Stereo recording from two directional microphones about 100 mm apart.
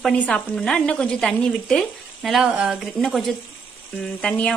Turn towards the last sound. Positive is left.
turn(degrees=10)  # may be behind; listen again after turning